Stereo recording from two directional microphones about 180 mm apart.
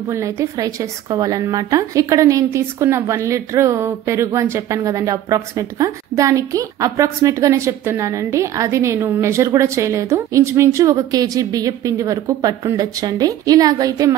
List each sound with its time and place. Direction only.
0.1 s a woman's voice: 15° right (ahead or behind)